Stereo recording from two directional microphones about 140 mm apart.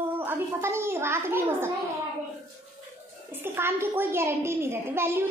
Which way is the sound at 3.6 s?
15° right (ahead or behind).